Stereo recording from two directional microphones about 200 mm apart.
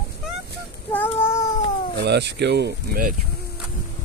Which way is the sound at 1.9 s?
55° right (ahead or behind).